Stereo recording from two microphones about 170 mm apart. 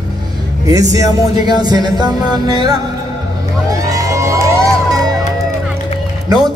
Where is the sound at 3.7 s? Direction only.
20° right (ahead or behind).